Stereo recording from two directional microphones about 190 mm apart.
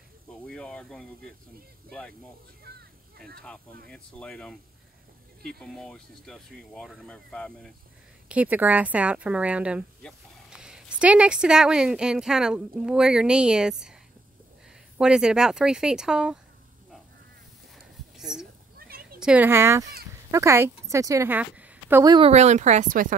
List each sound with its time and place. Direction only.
0.5 s speech: 5° left (ahead or behind)
3.9 s speech: 5° left (ahead or behind)
5.6 s speech: 5° left (ahead or behind)
8.3 s speech: 10° right (ahead or behind)
15.0 s speech: 5° right (ahead or behind)
17.7 s a sound: centre (ahead or behind)
18.8 s a sound: 50° right (ahead or behind)
19.1 s speech: 5° right (ahead or behind)
22.0 s speech: 25° right (ahead or behind)
22.3 s speech: 35° right (ahead or behind)